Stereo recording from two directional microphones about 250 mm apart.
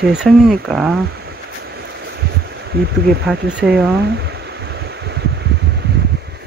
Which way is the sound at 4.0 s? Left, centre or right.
Right.